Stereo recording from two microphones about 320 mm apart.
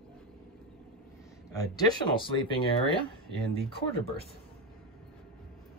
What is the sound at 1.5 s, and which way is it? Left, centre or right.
Speech, centre.